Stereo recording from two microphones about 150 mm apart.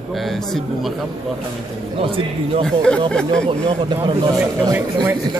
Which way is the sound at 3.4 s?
35° right (ahead or behind).